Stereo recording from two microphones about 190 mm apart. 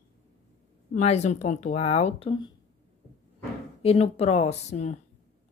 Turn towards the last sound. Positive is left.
turn(degrees=35)  # may be behind; listen again after turning